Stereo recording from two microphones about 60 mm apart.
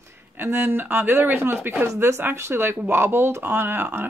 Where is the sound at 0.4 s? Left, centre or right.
Right.